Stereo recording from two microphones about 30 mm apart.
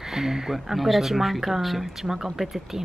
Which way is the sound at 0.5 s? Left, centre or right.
Centre.